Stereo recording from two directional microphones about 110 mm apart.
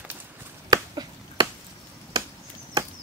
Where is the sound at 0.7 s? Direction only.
40° right (ahead or behind).